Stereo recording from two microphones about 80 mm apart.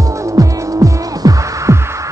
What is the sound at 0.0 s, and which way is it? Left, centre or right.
Music, right.